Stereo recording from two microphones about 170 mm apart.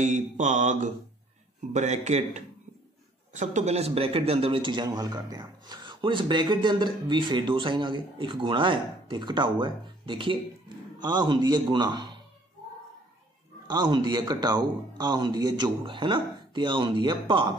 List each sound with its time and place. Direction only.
0.0 s mantra: 45° right (ahead or behind)
3.3 s a man's voice: 40° right (ahead or behind); by 12.1 s 25° right (ahead or behind)
13.7 s a man's voice: 25° right (ahead or behind)